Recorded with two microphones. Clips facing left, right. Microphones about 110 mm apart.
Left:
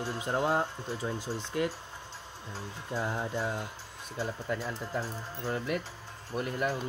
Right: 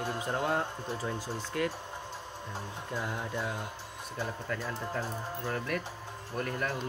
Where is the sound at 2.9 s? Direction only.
30° left (ahead or behind).